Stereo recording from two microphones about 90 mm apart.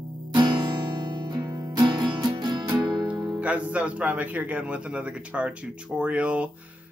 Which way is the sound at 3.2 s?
10° right (ahead or behind).